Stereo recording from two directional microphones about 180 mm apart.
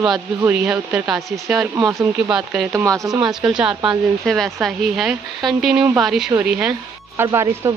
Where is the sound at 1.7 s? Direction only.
20° right (ahead or behind).